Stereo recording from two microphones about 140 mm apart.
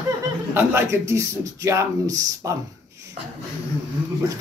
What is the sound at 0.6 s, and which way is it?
A man's voice, 15° right (ahead or behind).